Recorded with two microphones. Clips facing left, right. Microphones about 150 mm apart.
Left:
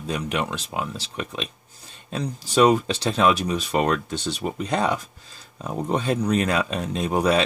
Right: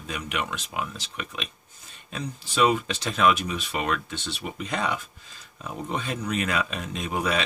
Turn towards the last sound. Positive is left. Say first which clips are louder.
# left 6 dB
turn(degrees=35)  # may be behind; listen again after turning